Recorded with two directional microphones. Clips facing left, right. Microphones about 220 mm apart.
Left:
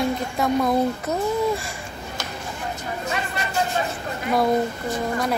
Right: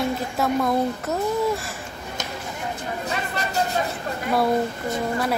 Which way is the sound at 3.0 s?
40° right (ahead or behind).